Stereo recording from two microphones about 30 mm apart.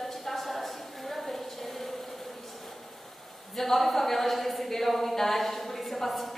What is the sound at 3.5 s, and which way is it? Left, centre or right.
A woman's voice, centre.